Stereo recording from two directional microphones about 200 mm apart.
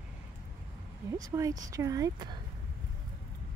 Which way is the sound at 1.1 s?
15° right (ahead or behind).